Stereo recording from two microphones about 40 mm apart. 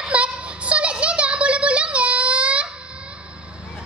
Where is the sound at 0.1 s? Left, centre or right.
Right.